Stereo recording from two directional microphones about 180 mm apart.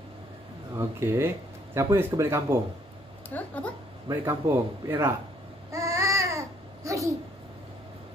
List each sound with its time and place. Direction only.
0.7 s speech: 15° right (ahead or behind)
3.3 s speech: 10° left (ahead or behind)
4.1 s a man's voice: 15° right (ahead or behind)
5.7 s babbling: 15° right (ahead or behind)